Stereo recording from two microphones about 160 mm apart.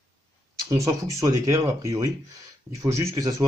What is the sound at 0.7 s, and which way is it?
Speech, 20° right (ahead or behind).